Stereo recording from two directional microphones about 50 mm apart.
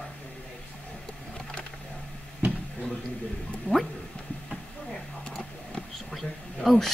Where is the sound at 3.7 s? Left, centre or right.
Left.